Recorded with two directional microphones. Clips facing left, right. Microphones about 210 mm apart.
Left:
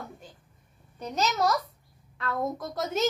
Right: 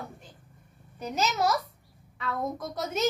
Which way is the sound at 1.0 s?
5° right (ahead or behind).